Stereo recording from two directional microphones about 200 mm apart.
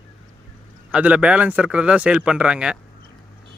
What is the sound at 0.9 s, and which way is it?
Speech, 5° right (ahead or behind).